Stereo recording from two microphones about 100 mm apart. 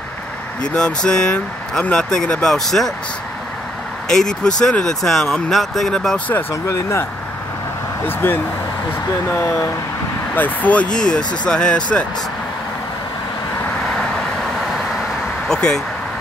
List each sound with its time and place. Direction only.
0.7 s speech: 10° left (ahead or behind)
4.1 s speech: 5° left (ahead or behind)
6.5 s speech: 30° left (ahead or behind)
8.1 s speech: 20° left (ahead or behind)
10.3 s speech: 15° left (ahead or behind)
15.4 s speech: 5° left (ahead or behind)